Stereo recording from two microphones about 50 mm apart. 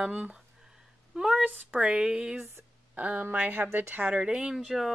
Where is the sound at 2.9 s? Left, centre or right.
Right.